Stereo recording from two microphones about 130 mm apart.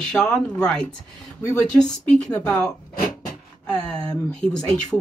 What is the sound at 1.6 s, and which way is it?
Speech, 5° left (ahead or behind).